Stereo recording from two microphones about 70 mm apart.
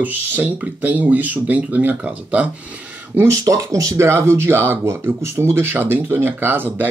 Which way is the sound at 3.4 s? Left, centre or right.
Right.